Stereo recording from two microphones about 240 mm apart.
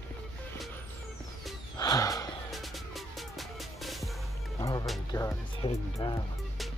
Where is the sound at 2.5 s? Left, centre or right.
Centre.